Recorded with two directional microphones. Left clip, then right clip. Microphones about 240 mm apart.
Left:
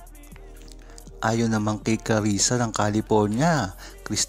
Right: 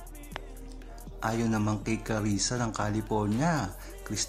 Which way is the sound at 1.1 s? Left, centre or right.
Left.